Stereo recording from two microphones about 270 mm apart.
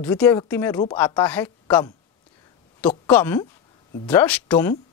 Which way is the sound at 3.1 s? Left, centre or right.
Centre.